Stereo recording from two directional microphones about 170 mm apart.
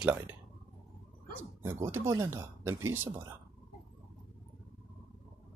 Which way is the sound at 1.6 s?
15° right (ahead or behind).